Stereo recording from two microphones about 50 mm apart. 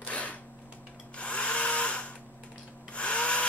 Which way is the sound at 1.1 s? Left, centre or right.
Left.